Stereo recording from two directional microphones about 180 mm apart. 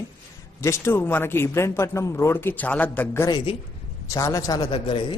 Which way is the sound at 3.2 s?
25° left (ahead or behind).